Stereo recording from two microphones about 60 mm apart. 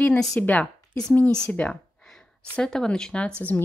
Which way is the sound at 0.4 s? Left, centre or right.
Left.